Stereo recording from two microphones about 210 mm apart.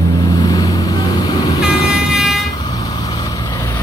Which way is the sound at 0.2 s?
15° left (ahead or behind).